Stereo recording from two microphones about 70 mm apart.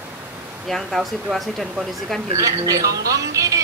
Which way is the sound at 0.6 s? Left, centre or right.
Centre.